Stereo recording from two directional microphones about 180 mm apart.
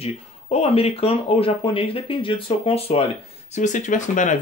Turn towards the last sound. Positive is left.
turn(degrees=45)  # may be behind; listen again after turning